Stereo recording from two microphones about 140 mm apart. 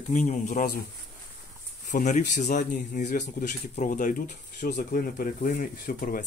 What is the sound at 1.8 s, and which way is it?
Speech, 60° left (ahead or behind).